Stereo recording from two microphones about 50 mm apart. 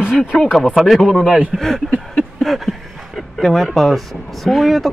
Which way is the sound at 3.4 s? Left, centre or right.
Centre.